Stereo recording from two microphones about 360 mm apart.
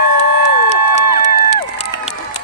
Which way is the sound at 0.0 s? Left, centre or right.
Left.